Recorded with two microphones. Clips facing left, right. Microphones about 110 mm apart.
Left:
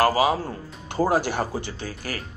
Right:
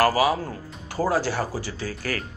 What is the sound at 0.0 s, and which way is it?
Speech, 25° left (ahead or behind).